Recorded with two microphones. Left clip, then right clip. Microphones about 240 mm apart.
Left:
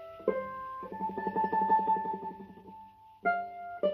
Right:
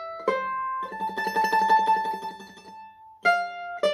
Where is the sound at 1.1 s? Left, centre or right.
Centre.